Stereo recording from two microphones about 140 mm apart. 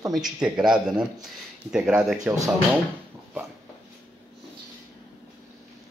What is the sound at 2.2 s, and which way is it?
Speech, 20° right (ahead or behind).